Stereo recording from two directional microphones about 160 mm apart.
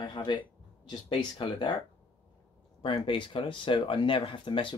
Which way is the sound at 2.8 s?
30° left (ahead or behind).